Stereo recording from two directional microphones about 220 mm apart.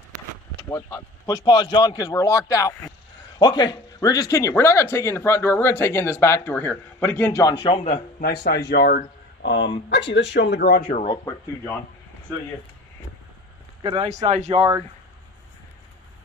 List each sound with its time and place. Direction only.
0.7 s speech: 15° left (ahead or behind)
7.8 s speech: 30° left (ahead or behind)
8.5 s speech: 50° left (ahead or behind)
11.1 s speech: 15° left (ahead or behind)
13.8 s speech: 25° right (ahead or behind)